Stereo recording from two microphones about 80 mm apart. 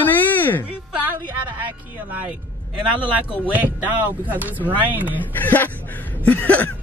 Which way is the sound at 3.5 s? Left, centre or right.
Right.